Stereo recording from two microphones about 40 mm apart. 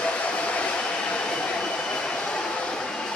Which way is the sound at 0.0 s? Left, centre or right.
Left.